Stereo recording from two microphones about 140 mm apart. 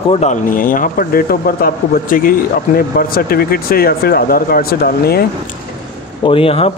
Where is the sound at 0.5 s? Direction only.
80° left.